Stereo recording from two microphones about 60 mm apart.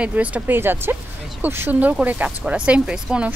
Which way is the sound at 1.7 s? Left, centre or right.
Right.